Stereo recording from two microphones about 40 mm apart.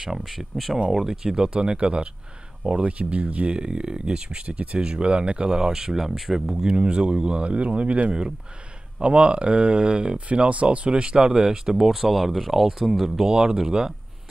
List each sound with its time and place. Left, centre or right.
0.0 s speech: centre
6.7 s speech: right; by 13.2 s centre
13.2 s speech: centre